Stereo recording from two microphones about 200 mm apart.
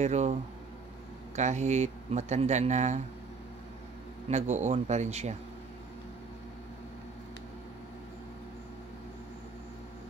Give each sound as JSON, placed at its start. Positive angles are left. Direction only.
{"t": 0.0, "sound": "speech", "side_deg": -35}
{"t": 4.3, "sound": "speech", "side_deg": -35}